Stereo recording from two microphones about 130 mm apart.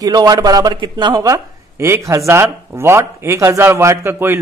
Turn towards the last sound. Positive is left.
turn(degrees=-20)  # may be behind; listen again after turning